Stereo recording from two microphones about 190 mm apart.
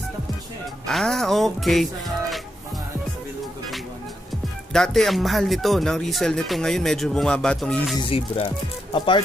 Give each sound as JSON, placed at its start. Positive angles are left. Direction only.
{"t": 0.8, "sound": "speech", "side_deg": 5}
{"t": 4.3, "sound": "speech", "side_deg": 0}
{"t": 8.0, "sound": "speech", "side_deg": 30}